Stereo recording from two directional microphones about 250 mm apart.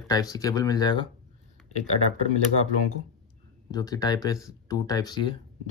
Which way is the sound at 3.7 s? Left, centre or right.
Centre.